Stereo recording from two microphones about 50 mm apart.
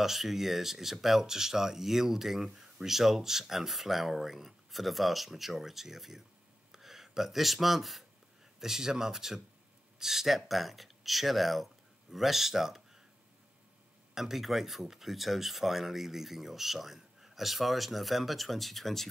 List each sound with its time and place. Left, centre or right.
0.0 s speech: centre
14.1 s speech: centre